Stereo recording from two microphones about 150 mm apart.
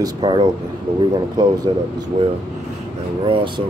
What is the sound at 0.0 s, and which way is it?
A man's voice, 30° right (ahead or behind).